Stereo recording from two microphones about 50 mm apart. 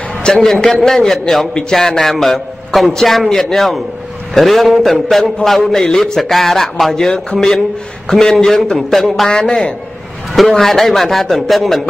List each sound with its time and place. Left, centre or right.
0.3 s a man's voice: centre
8.7 s a man's voice: centre
9.3 s a man's voice: centre
10.3 s a man's voice: centre